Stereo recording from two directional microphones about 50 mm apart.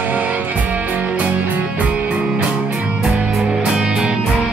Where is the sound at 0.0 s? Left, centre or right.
Right.